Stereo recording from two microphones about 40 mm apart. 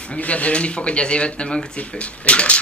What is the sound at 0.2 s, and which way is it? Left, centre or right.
Speech, left.